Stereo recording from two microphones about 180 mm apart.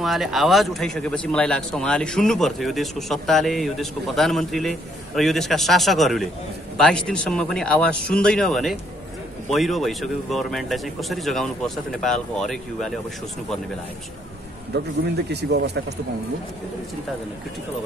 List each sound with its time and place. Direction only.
0.0 s speech: centre (ahead or behind)
15.2 s speech: 65° right (ahead or behind)